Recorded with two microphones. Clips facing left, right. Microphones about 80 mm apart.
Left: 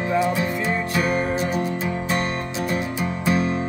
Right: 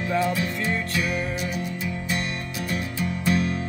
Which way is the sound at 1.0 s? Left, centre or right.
Left.